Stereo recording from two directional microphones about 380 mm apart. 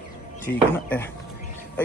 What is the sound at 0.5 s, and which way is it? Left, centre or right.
Speech, centre.